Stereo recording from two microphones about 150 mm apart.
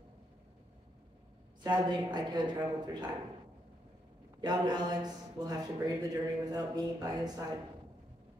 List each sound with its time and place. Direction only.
1.6 s a man's voice: 30° right (ahead or behind)
4.4 s a man's voice: 30° right (ahead or behind)